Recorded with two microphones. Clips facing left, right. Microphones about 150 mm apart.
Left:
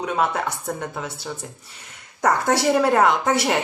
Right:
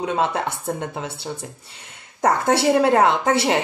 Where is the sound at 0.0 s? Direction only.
25° right (ahead or behind).